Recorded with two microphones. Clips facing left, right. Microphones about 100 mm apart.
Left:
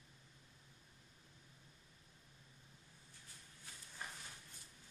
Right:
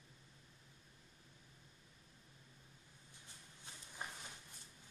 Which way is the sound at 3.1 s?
20° right (ahead or behind).